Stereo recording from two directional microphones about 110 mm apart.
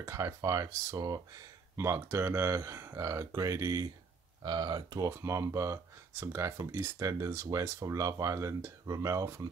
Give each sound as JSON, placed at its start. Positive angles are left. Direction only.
{"t": 0.0, "sound": "speech", "side_deg": -25}
{"t": 5.0, "sound": "speech", "side_deg": -25}